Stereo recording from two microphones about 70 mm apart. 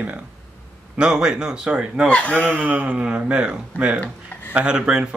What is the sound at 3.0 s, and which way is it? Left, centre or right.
Speech, centre.